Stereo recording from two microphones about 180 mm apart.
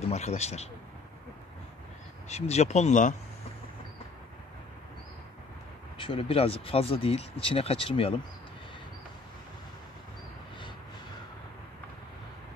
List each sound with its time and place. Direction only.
0.1 s speech: 35° left (ahead or behind)
2.2 s speech: 35° left (ahead or behind)
5.9 s speech: 30° left (ahead or behind)